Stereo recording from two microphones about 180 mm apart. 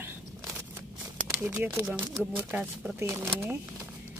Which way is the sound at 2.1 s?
5° right (ahead or behind).